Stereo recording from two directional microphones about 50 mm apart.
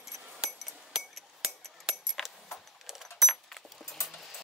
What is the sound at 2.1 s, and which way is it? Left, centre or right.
Keys jangling, centre.